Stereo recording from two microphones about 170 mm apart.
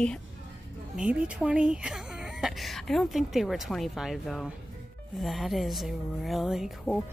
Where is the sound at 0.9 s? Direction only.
5° right (ahead or behind).